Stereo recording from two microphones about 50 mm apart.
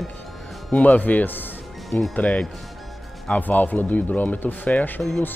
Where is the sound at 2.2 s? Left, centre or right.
Left.